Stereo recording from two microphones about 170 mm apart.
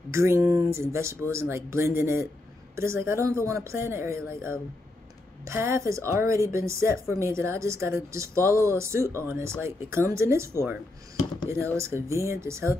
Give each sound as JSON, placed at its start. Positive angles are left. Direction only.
{"t": 0.1, "sound": "a woman's voice", "side_deg": -15}